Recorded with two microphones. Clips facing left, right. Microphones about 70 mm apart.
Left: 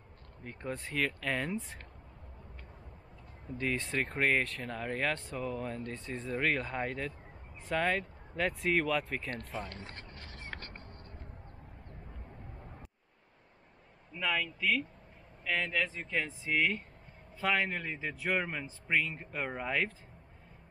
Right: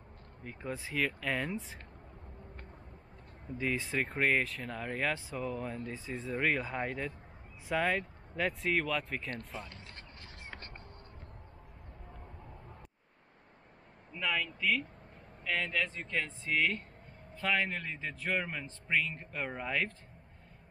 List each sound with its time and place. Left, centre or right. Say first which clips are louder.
0.4 s speech: left 1 dB; centre
3.5 s speech: even; centre
9.7 s speech: left 5 dB; left
14.1 s speech: left 1 dB; centre